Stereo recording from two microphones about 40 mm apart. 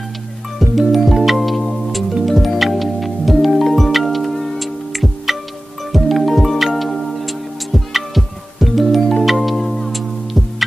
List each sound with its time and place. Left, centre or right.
0.6 s music: centre